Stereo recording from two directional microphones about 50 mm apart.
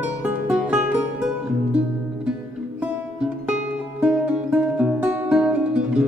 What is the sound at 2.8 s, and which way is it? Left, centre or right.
Music, right.